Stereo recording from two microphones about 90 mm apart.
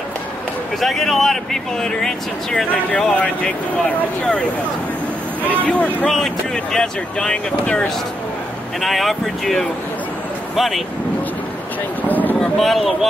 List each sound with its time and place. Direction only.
0.7 s speech: 5° left (ahead or behind)
5.5 s speech: 15° left (ahead or behind)
6.0 s speech: 5° left (ahead or behind)
8.8 s speech: centre (ahead or behind)
12.1 s a sound: 20° left (ahead or behind)
12.4 s speech: centre (ahead or behind)